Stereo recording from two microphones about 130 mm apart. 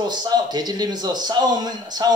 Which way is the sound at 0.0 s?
30° right (ahead or behind).